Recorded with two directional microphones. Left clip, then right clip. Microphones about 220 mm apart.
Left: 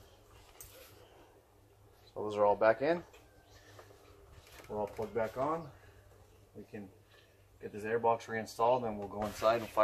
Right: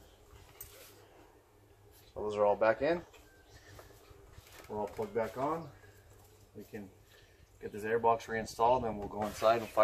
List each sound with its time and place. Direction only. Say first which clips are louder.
2.1 s speech: even; 40° left (ahead or behind)
4.7 s speech: even; 10° left (ahead or behind)
7.8 s speech: right 2 dB; 5° left (ahead or behind)